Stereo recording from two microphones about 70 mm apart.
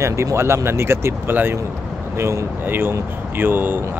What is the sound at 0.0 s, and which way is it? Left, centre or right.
Speech, right.